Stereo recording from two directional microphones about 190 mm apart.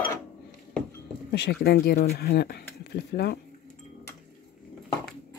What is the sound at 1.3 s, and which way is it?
Speech, 60° left (ahead or behind).